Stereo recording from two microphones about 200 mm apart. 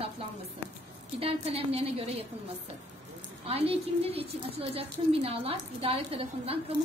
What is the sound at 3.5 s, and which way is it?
A woman's voice, 30° right (ahead or behind).